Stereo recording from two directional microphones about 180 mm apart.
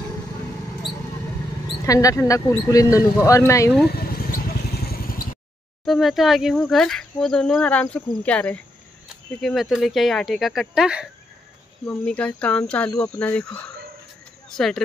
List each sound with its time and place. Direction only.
1.9 s speech: 20° left (ahead or behind)
3.9 s vehicle: 55° left (ahead or behind)
5.9 s speech: centre (ahead or behind)
11.8 s speech: 5° left (ahead or behind)